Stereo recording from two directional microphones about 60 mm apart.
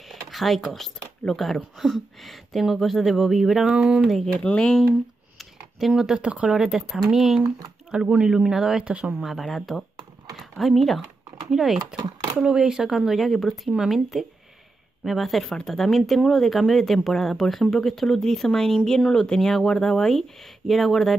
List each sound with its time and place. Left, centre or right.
0.1 s speech: centre
3.6 s speech: centre
4.3 s speech: centre
5.4 s speech: centre